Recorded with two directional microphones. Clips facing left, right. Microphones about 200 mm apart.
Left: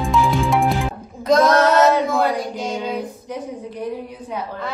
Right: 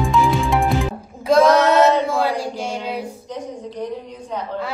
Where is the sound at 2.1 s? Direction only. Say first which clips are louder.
Left 1 dB; 30° right (ahead or behind).